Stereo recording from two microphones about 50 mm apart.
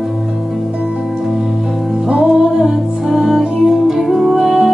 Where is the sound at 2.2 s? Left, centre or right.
Centre.